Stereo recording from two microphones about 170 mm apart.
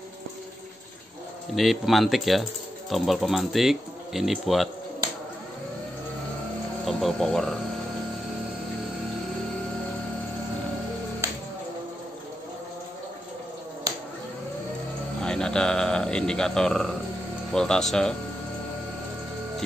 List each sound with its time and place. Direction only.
1.5 s speech: centre (ahead or behind)
6.8 s speech: centre (ahead or behind)
11.2 s music: 15° right (ahead or behind)
15.2 s speech: 5° left (ahead or behind)